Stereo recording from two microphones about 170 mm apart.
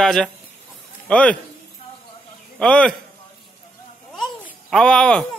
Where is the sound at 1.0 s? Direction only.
5° left (ahead or behind).